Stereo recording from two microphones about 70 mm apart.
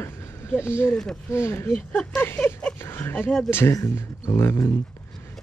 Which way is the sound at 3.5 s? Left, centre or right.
Left.